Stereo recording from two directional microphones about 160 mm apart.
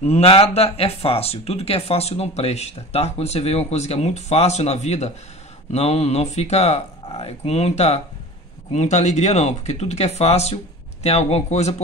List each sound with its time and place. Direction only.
0.0 s speech: 40° left (ahead or behind)